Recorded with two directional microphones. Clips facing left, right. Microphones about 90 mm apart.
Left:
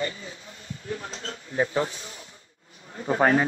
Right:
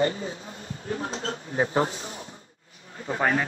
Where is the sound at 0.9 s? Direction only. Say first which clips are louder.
Right 4 dB; 30° right (ahead or behind).